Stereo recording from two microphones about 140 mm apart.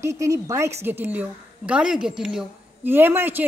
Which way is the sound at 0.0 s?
20° right (ahead or behind).